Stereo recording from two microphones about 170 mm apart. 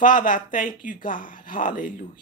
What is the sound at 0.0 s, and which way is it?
Speech, 50° left (ahead or behind).